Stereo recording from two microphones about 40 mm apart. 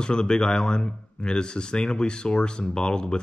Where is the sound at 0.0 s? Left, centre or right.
Left.